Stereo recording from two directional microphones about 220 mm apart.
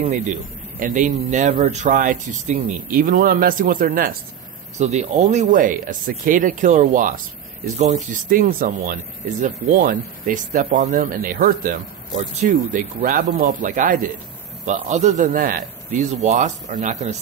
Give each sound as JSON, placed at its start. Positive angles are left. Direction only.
{"t": 0.0, "sound": "speech", "side_deg": -35}
{"t": 4.7, "sound": "speech", "side_deg": -30}
{"t": 16.0, "sound": "speech", "side_deg": -30}